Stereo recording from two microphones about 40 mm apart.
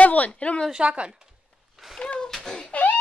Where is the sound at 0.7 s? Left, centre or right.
Right.